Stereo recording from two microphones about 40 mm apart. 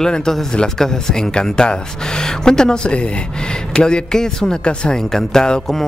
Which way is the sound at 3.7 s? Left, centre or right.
Centre.